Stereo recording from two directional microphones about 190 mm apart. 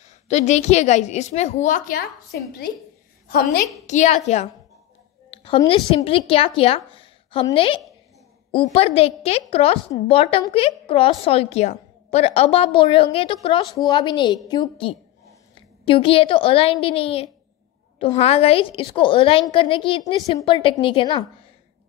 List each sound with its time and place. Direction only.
0.3 s a woman's voice: 35° left (ahead or behind); by 3.6 s 55° left (ahead or behind)
3.8 s a woman's voice: 40° left (ahead or behind)
5.3 s a sound: 30° left (ahead or behind)
6.0 s a woman's voice: 30° left (ahead or behind)